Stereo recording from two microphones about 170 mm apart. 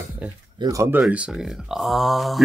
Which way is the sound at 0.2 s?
10° right (ahead or behind).